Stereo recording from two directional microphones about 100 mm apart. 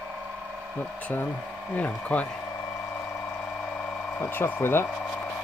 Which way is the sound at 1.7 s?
15° left (ahead or behind).